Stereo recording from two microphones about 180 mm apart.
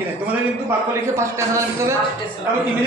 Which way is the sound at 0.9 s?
15° right (ahead or behind).